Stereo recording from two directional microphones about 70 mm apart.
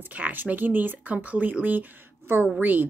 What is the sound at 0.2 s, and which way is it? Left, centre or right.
A woman's voice, right.